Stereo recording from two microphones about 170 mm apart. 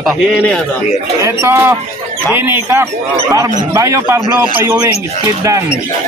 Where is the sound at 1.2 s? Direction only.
15° right (ahead or behind).